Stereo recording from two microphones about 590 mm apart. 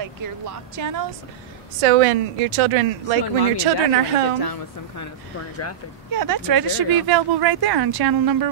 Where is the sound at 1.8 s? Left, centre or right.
Right.